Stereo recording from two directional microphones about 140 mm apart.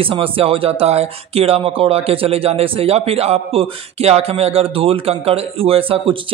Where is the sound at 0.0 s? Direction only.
40° right (ahead or behind).